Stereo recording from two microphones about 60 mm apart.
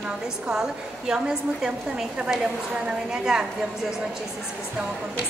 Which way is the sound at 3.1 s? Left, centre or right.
Centre.